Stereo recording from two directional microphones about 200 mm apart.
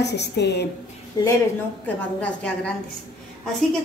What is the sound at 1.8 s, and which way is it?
Speech, 5° left (ahead or behind).